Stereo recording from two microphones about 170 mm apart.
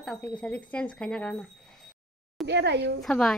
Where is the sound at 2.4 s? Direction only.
90° right.